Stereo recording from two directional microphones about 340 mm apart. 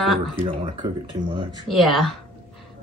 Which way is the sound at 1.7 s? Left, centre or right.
Centre.